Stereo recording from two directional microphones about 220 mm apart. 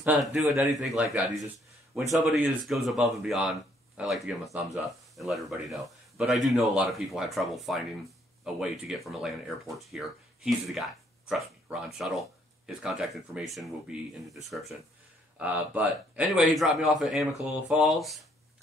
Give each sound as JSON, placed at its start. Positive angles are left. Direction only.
{"t": 0.0, "sound": "speech", "side_deg": 0}
{"t": 0.4, "sound": "a man's voice", "side_deg": -15}
{"t": 0.7, "sound": "speech", "side_deg": 0}